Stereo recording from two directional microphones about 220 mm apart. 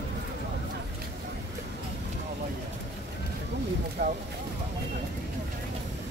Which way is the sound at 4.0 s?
40° right (ahead or behind).